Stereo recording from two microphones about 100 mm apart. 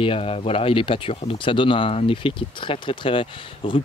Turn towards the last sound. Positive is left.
turn(degrees=55)  # may be behind; listen again after turning